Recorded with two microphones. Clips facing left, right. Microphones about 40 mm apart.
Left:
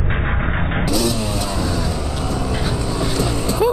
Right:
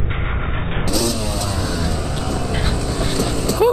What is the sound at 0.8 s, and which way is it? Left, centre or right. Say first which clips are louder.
Vehicle: even; centre.